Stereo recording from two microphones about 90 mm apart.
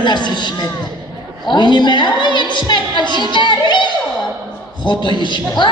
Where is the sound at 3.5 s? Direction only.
55° left (ahead or behind).